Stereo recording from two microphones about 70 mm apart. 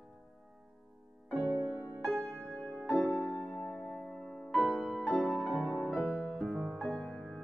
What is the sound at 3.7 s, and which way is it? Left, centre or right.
Music, centre.